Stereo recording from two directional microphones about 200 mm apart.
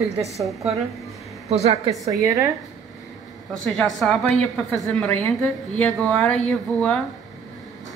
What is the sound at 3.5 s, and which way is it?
A woman's voice, centre (ahead or behind).